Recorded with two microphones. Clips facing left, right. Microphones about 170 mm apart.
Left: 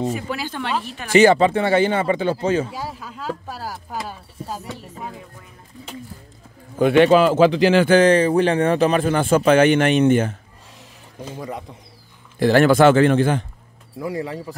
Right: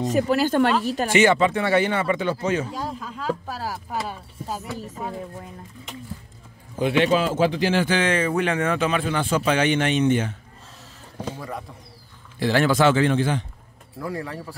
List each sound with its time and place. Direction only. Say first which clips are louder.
0.1 s speech: right 7 dB; 45° right (ahead or behind)
1.1 s speech: left 5 dB; 35° left (ahead or behind)
2.7 s speech: right 1 dB; 5° left (ahead or behind)
6.8 s a man's voice: left 7 dB; 55° left (ahead or behind); by 7.9 s 75° left (ahead or behind)
7.9 s a man's voice: left 8 dB; 35° left (ahead or behind)
11.3 s speech: left 3 dB; 20° left (ahead or behind)
12.4 s a man's voice: left 6 dB; 50° left (ahead or behind)
13.9 s speech: left 4 dB; 20° left (ahead or behind)